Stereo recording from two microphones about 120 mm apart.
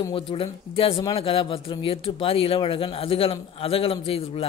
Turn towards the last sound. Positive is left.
turn(degrees=50)  # may be behind; listen again after turning